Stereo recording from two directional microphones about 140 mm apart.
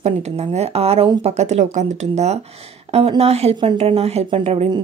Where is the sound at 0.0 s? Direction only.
50° right (ahead or behind).